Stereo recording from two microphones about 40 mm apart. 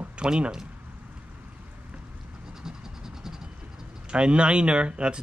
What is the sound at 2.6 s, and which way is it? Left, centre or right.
Vehicle, centre.